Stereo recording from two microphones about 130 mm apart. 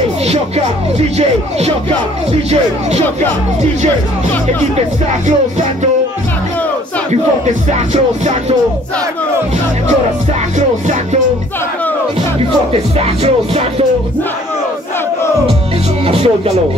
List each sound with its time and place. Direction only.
0.9 s speech: 55° right (ahead or behind)
7.9 s speech: 65° right (ahead or behind)
13.0 s music: 50° right (ahead or behind)
16.1 s music: 50° right (ahead or behind)